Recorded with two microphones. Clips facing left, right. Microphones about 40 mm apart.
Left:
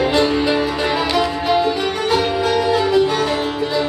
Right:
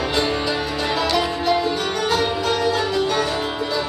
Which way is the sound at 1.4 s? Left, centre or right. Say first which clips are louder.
Left 4 dB; left.